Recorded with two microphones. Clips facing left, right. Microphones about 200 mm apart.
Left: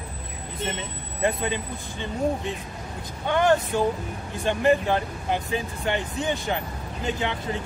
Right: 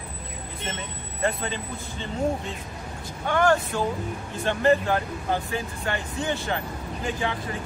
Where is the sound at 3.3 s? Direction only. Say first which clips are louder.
Left 1 dB; 20° left (ahead or behind).